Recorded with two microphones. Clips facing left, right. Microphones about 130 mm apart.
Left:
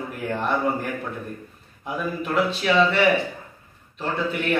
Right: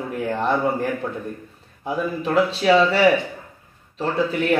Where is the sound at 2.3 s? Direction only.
35° right (ahead or behind).